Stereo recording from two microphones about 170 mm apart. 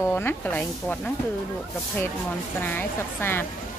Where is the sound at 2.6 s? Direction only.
10° left (ahead or behind).